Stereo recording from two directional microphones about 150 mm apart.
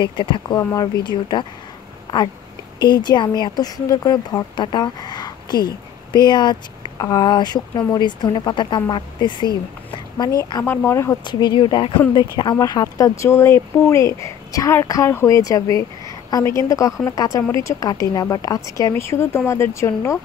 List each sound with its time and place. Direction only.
0.0 s speech: 30° left (ahead or behind)
2.8 s speech: 30° left (ahead or behind)
9.8 s a sound: 30° left (ahead or behind)
10.6 s speech: 15° left (ahead or behind)
11.2 s speech: 30° left (ahead or behind)